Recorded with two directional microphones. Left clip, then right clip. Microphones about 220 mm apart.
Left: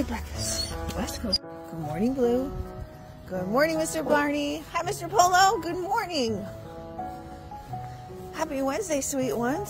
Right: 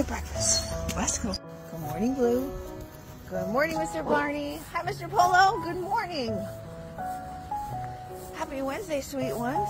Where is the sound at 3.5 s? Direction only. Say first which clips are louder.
Left 4 dB; 50° left (ahead or behind).